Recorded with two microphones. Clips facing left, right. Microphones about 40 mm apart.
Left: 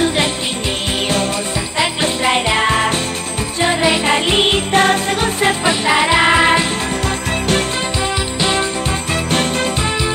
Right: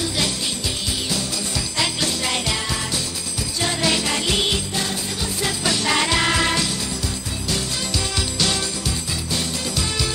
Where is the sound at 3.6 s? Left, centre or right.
Left.